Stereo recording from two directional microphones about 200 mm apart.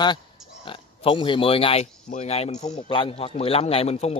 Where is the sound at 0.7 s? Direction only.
25° left (ahead or behind).